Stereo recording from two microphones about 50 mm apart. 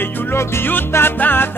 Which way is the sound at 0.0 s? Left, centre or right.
Left.